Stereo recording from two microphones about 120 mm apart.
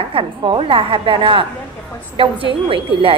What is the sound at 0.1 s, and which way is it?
Speech, 45° right (ahead or behind).